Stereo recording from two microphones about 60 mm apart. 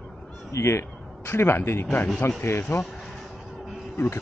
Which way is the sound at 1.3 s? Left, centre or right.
Left.